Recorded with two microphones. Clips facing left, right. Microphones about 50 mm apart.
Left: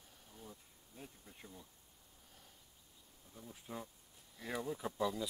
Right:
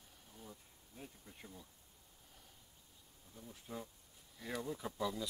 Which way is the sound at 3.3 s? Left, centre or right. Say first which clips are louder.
Even; centre.